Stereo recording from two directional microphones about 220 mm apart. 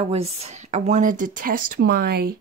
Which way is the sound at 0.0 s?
25° right (ahead or behind).